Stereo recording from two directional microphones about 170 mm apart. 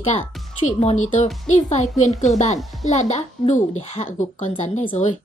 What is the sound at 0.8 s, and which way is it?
A woman's voice, 40° left (ahead or behind).